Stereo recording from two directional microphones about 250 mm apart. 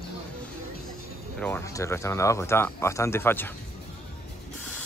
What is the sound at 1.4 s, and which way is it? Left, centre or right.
Speech, centre.